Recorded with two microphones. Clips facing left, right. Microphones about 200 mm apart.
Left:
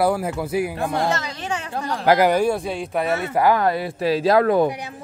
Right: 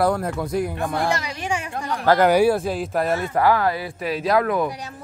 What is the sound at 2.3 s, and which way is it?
Speech, 5° right (ahead or behind).